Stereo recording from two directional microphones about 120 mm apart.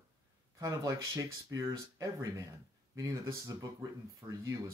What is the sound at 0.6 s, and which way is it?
Speech, 25° right (ahead or behind).